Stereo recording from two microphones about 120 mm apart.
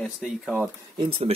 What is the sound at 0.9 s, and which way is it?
Speech, 55° right (ahead or behind).